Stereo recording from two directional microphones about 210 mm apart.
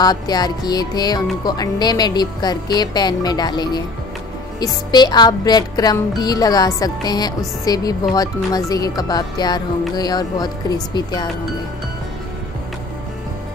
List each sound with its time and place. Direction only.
0.0 s music: 20° left (ahead or behind)